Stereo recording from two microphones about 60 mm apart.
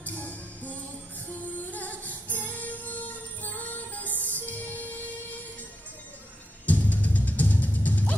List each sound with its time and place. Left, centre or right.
0.0 s music: left
6.6 s music: left